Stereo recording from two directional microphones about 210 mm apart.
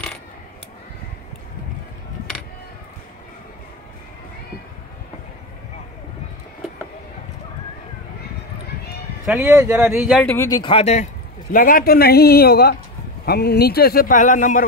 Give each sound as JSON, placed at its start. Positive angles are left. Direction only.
{"t": 9.2, "sound": "speech", "side_deg": -5}
{"t": 9.9, "sound": "speech", "side_deg": 0}
{"t": 11.5, "sound": "a man's voice", "side_deg": 40}